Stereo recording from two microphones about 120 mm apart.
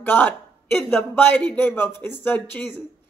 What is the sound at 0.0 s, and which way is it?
Speech, 15° left (ahead or behind).